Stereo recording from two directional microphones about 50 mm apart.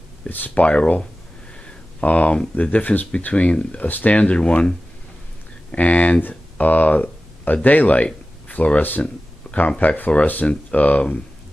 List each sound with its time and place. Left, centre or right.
0.3 s speech: left
0.7 s speech: left